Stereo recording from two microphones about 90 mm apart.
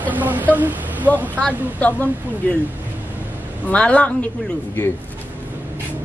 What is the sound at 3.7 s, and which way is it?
Speech, 15° left (ahead or behind).